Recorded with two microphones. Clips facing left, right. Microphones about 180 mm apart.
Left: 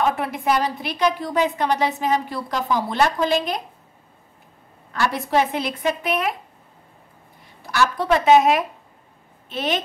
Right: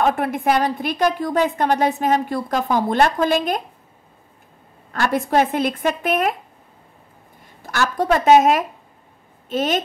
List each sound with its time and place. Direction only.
0.0 s a woman's voice: 50° right (ahead or behind)
4.9 s a woman's voice: 50° right (ahead or behind)
7.6 s a woman's voice: 45° right (ahead or behind)